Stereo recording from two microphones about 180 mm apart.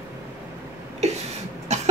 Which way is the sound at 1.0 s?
40° right (ahead or behind).